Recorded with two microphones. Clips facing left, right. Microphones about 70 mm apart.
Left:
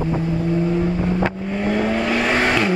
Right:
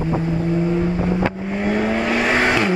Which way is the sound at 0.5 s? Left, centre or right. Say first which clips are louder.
Even; centre.